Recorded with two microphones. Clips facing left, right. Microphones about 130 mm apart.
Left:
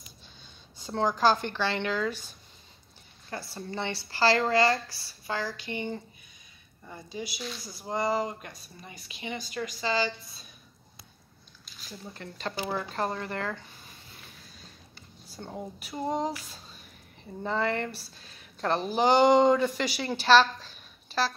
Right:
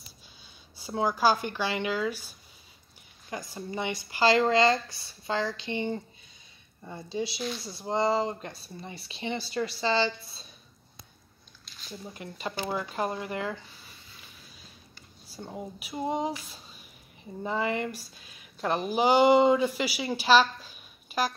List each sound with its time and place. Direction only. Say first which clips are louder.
0.7 s speech: even; 10° right (ahead or behind); by 10.4 s 30° right (ahead or behind)
12.0 s speech: even; 10° right (ahead or behind)
15.2 s a woman's voice: even; 10° right (ahead or behind)